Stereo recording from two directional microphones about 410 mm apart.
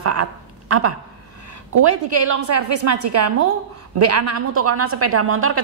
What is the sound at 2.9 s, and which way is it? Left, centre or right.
A woman's voice, right.